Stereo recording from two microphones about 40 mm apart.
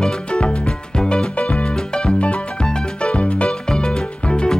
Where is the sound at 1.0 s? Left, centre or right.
Left.